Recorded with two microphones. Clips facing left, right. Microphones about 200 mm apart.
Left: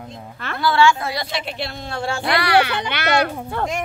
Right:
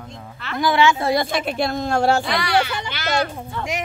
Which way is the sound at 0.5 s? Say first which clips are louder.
Left 1 dB; 15° right (ahead or behind).